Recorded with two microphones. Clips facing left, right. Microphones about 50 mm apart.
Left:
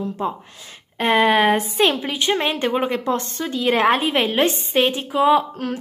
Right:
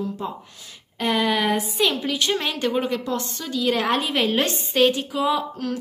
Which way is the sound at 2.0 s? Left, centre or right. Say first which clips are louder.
Left 3 dB; left.